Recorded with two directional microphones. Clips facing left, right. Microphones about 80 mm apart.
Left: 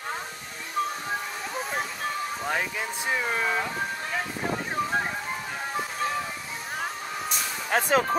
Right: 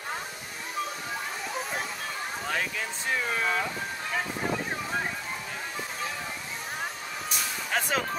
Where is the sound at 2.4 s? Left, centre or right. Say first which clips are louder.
Left 1 dB; centre.